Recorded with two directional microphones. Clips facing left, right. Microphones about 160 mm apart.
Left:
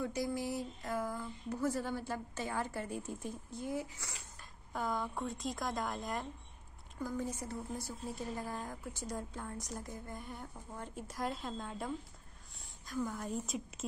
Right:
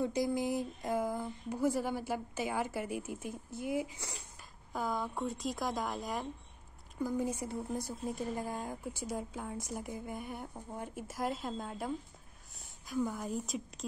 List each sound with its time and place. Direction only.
0.0 s a sound: 20° right (ahead or behind)
1.5 s a woman's voice: 10° right (ahead or behind)
4.7 s speech: 5° right (ahead or behind)
7.0 s a woman's voice: 10° right (ahead or behind)